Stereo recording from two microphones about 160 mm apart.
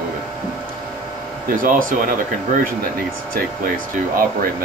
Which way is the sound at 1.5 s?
60° right (ahead or behind).